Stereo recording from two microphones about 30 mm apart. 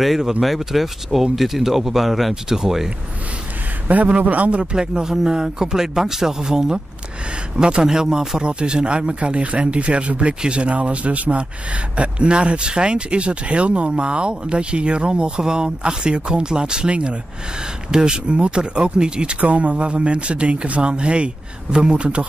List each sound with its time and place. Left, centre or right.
0.4 s speech: centre
3.8 s a man's voice: right
4.7 s a man's voice: right
17.9 s speech: right
19.4 s speech: right